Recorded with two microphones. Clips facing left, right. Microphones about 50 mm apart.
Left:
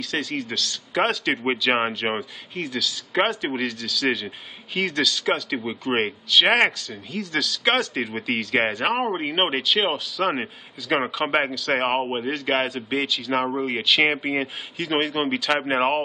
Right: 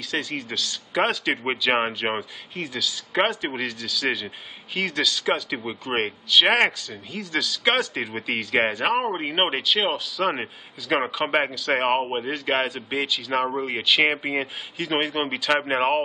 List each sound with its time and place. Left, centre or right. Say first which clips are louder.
0.0 s speech: left 1 dB; centre